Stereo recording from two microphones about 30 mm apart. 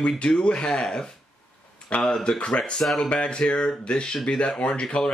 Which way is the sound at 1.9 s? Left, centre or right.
Left.